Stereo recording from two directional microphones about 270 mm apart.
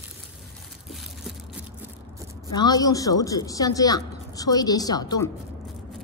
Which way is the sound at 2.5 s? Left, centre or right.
Centre.